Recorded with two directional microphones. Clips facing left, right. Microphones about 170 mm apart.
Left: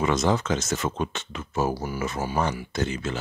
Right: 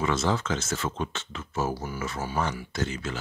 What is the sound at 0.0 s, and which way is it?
Speech, 15° left (ahead or behind).